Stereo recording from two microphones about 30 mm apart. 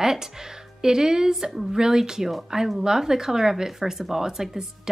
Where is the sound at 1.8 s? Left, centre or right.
Centre.